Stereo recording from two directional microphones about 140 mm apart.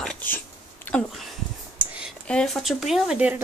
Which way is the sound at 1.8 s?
5° right (ahead or behind).